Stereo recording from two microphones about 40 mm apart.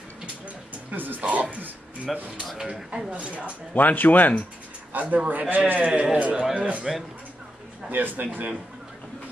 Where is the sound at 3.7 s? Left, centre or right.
Left.